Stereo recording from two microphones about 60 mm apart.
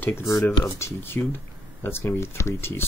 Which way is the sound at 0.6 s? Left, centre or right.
Left.